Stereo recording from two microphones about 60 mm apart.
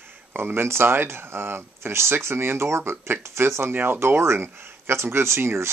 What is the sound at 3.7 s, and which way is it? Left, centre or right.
Speech, right.